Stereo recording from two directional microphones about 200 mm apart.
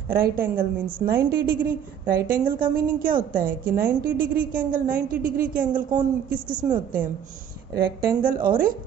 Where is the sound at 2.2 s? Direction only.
45° right (ahead or behind).